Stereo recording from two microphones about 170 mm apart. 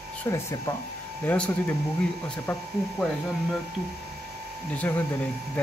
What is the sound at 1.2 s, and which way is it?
Speech, 5° left (ahead or behind).